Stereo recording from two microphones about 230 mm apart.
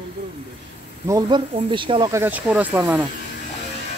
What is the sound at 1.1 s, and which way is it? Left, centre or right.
Speech, centre.